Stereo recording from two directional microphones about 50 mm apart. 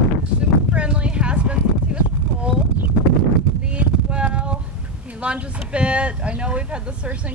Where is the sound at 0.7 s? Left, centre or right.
Right.